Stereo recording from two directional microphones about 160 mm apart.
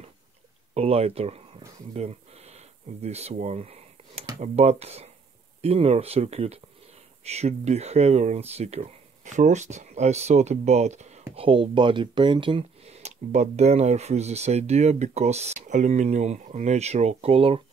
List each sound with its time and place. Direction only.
0.7 s speech: 40° right (ahead or behind)
2.0 s a sound: 40° right (ahead or behind)
4.4 s speech: 40° right (ahead or behind)
11.3 s speech: 35° right (ahead or behind)